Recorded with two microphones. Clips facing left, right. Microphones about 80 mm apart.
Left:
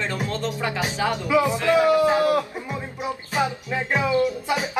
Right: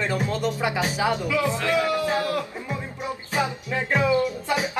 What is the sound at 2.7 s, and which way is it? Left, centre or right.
Music, centre.